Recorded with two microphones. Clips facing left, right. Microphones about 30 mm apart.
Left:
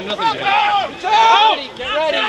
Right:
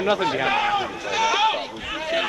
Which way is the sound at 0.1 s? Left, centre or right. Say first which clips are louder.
Left 8 dB; left.